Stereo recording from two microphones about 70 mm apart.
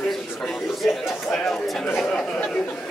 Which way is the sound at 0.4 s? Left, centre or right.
Centre.